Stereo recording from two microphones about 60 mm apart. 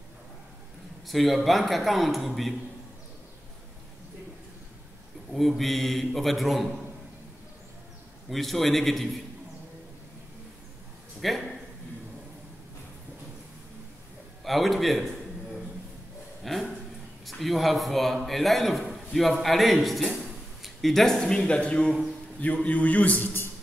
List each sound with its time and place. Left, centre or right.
1.0 s a man's voice: centre
5.3 s a man's voice: centre
8.3 s a man's voice: centre
11.1 s a sound: centre
14.4 s a sound: centre
17.3 s a man's voice: centre; by 23.5 s left